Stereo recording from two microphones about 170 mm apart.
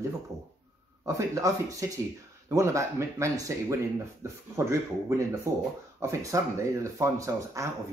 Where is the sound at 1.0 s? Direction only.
20° right (ahead or behind).